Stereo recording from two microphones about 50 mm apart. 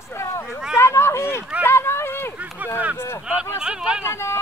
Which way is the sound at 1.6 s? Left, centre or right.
Left.